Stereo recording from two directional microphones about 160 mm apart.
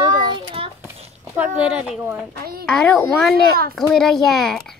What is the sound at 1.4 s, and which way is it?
Speech, 5° right (ahead or behind).